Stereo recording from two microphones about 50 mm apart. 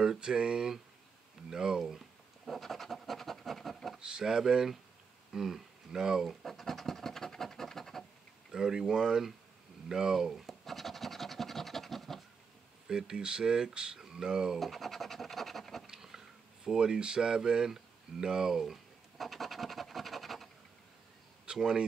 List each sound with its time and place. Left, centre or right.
0.0 s speech: centre
4.0 s speech: centre
6.4 s scratch: centre
8.5 s speech: centre
9.8 s scratch: centre
12.8 s speech: centre
14.6 s speech: centre
15.9 s a sound: centre
16.6 s speech: centre
21.5 s speech: centre